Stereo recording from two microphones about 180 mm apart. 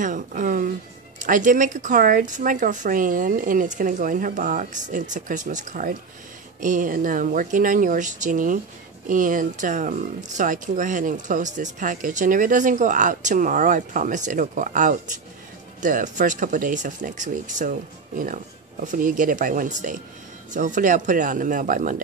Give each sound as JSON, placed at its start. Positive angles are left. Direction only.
{"t": 0.0, "sound": "speech", "side_deg": -45}